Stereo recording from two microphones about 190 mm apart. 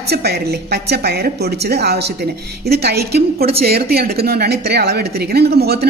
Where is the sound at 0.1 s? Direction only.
60° right (ahead or behind).